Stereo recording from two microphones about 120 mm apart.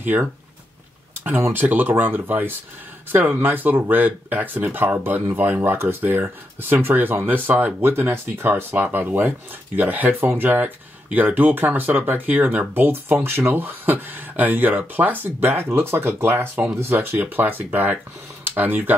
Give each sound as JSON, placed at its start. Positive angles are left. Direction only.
{"t": 0.0, "sound": "speech", "side_deg": -15}